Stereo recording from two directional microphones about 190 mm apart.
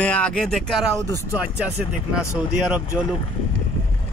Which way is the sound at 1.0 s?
15° right (ahead or behind).